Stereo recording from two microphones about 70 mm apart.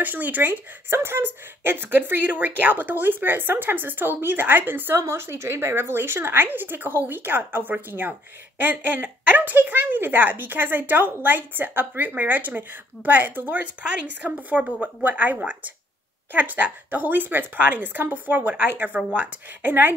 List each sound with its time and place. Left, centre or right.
0.0 s a woman's voice: right